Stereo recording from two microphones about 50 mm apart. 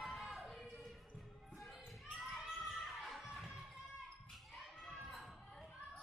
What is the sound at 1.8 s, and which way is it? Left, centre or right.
Children playing, centre.